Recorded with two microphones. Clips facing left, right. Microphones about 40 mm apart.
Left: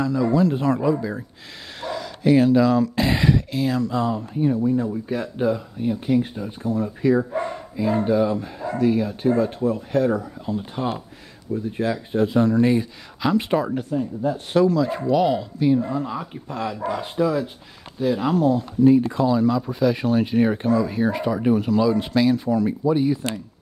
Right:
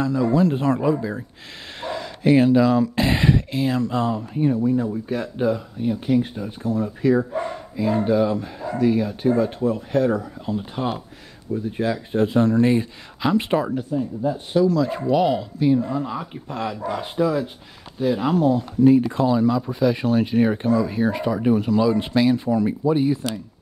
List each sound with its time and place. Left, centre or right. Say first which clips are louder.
0.0 s speech: even; centre
1.8 s a sound: even; right
2.5 s speech: even; centre; by 4.1 s right
4.6 s speech: even; centre
8.5 s a sound: even; centre
8.8 s speech: right 1 dB; centre
9.3 s speech: even; centre
9.7 s speech: even; centre
12.2 s speech: even; centre
13.9 s speech: even; left
14.2 s speech: left 1 dB; left
14.8 s speech: even; centre; by 19.4 s right
19.4 s speech: even; centre
21.9 s speech: even; centre